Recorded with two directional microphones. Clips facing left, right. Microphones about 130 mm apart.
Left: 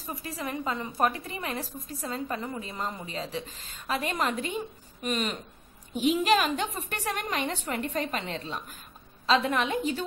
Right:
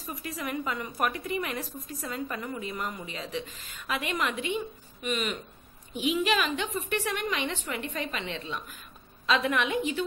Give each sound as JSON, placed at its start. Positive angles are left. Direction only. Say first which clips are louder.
{"t": 0.0, "sound": "a woman's voice", "louder": "even", "side_deg": 30}